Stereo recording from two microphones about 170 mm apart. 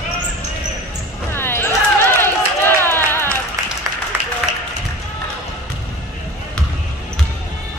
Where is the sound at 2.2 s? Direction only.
15° left (ahead or behind).